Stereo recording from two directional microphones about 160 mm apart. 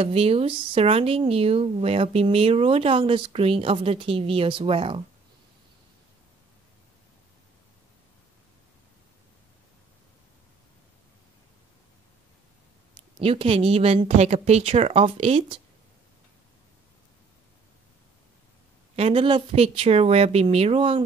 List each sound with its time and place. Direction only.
0.0 s speech: 40° right (ahead or behind)
13.2 s speech: 35° right (ahead or behind)
18.9 s speech: 40° right (ahead or behind)